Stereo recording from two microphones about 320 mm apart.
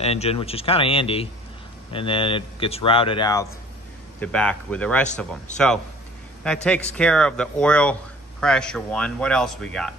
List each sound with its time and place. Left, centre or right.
0.0 s speech: centre
6.4 s speech: centre